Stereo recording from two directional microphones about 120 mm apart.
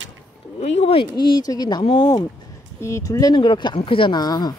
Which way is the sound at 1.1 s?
40° left (ahead or behind).